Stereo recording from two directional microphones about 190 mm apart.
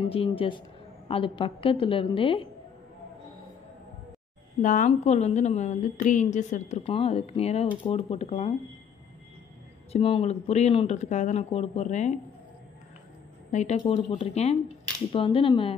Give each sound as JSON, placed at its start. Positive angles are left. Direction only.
{"t": 0.1, "sound": "a woman's voice", "side_deg": 30}
{"t": 4.6, "sound": "speech", "side_deg": 45}
{"t": 9.9, "sound": "speech", "side_deg": 30}
{"t": 13.5, "sound": "a woman's voice", "side_deg": 40}